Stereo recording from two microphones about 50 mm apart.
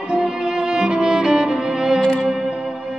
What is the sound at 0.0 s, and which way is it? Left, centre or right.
Music, centre.